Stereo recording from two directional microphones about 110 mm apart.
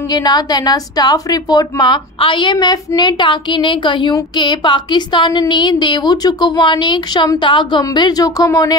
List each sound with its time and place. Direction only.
0.1 s a woman's voice: 40° left (ahead or behind)